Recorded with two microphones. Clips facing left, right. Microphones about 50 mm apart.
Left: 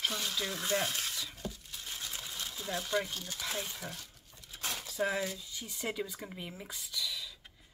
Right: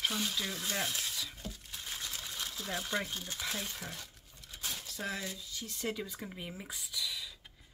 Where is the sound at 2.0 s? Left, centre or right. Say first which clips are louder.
Left 1 dB; centre.